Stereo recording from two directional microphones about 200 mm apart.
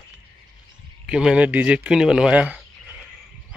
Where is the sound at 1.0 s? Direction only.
5° right (ahead or behind).